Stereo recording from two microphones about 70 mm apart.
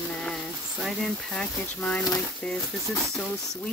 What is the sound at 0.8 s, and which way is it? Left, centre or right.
Speech, centre.